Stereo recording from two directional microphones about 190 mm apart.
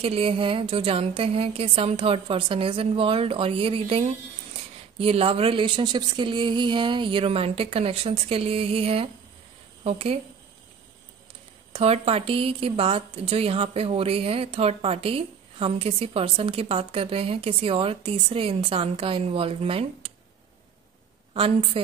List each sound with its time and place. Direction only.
0.0 s a woman's voice: 30° right (ahead or behind)
11.7 s a woman's voice: 30° right (ahead or behind)
21.3 s a woman's voice: 30° right (ahead or behind)